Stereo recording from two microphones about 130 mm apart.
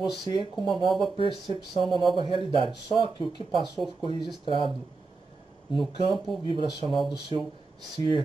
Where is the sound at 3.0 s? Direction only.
35° left (ahead or behind).